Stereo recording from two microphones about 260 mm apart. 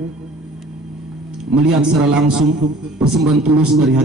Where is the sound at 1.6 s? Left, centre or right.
Right.